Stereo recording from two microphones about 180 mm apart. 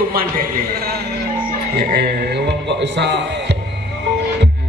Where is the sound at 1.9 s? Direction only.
65° right (ahead or behind).